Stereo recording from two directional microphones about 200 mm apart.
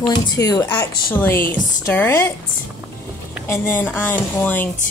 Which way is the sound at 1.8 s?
10° left (ahead or behind).